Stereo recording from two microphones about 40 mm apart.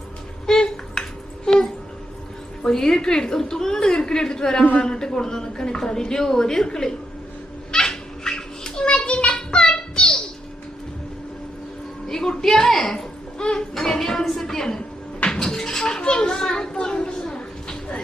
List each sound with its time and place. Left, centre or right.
0.5 s a sound: centre
2.6 s a woman's voice: centre
7.7 s cat: centre
8.8 s child singing: left
12.1 s music: centre
13.4 s music: left
13.7 s a sound: centre
14.4 s a woman's voice: centre
15.3 s music: centre
16.0 s children playing: left
16.7 s a sound: left